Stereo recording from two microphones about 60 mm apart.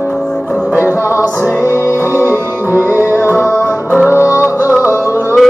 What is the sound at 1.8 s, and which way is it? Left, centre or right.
Music, left.